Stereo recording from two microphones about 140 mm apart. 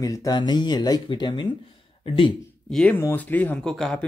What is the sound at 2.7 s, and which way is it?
Speech, 5° left (ahead or behind).